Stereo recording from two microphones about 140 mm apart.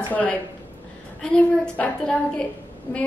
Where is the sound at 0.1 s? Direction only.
10° left (ahead or behind).